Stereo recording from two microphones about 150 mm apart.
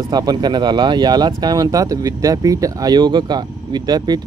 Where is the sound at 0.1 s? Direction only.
25° right (ahead or behind).